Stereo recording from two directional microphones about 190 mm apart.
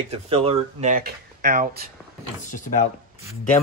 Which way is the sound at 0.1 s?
30° right (ahead or behind).